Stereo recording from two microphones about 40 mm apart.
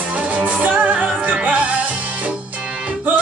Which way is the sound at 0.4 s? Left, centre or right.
Right.